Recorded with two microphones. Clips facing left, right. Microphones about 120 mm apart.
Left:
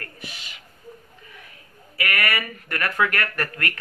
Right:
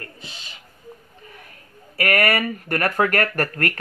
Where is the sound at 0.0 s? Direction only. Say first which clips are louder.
Even; 25° right (ahead or behind).